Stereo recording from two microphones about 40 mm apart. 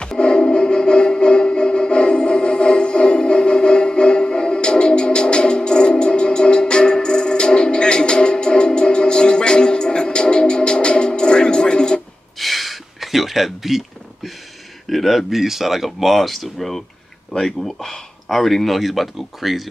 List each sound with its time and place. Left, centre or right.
0.0 s music: left
12.4 s a sound: centre
14.9 s speech: centre